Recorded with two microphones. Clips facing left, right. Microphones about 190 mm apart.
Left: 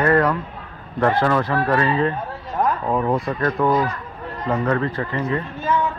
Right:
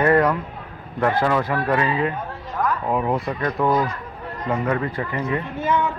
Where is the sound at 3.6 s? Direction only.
10° right (ahead or behind).